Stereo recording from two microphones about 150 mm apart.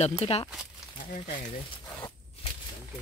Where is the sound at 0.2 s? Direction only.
45° left (ahead or behind).